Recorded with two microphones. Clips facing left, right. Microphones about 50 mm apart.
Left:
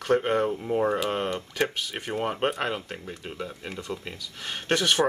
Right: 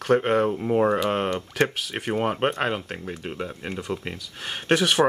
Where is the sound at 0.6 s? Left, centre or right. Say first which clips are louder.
Right 4 dB; right.